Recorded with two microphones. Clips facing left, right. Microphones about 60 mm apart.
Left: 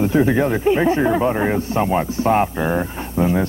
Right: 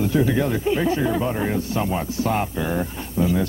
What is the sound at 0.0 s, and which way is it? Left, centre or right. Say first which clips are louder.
Speech: left 4 dB; left.